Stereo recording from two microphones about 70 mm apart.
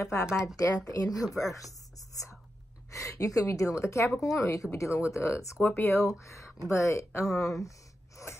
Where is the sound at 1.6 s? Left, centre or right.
Left.